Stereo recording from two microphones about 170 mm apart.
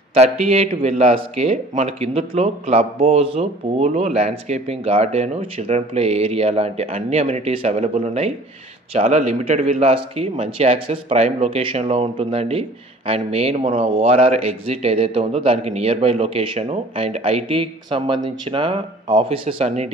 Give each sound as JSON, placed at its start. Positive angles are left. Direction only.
{"t": 0.1, "sound": "speech", "side_deg": -40}